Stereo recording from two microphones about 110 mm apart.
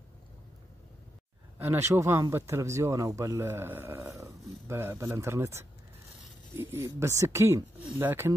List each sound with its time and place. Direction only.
1.6 s speech: 25° right (ahead or behind)